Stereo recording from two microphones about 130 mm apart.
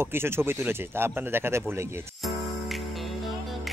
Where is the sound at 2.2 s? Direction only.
Centre (ahead or behind).